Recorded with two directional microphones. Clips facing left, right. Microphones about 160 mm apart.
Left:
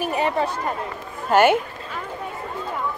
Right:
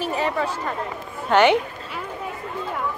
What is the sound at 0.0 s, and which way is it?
Speech, 20° left (ahead or behind).